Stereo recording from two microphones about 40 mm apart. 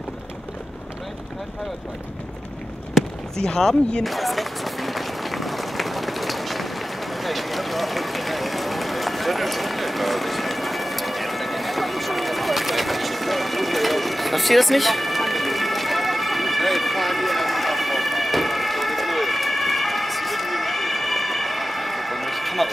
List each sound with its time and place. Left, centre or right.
3.4 s speech: centre
4.0 s run: centre